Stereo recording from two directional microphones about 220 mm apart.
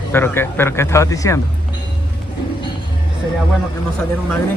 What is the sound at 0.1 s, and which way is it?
Speech, 10° left (ahead or behind).